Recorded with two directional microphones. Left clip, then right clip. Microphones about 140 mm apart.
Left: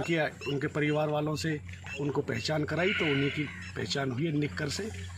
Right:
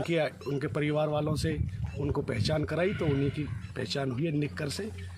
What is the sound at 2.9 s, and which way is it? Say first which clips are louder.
Speech: left 2 dB; 15° right (ahead or behind).